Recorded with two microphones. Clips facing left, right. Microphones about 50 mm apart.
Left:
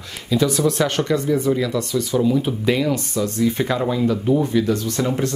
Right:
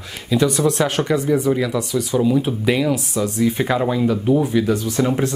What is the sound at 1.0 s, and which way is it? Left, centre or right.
Speech, centre.